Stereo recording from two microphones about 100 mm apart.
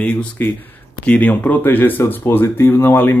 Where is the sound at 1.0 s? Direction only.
15° left (ahead or behind).